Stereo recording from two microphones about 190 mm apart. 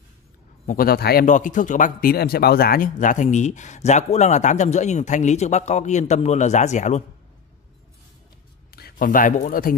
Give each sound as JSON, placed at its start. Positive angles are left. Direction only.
{"t": 0.7, "sound": "speech", "side_deg": 50}
{"t": 8.7, "sound": "speech", "side_deg": 50}